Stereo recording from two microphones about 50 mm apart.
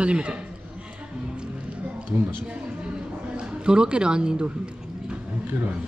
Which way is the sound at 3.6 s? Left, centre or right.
Centre.